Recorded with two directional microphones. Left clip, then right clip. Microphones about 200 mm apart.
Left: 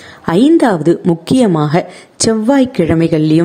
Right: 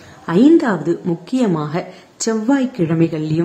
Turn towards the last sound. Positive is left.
turn(degrees=35)  # may be behind; listen again after turning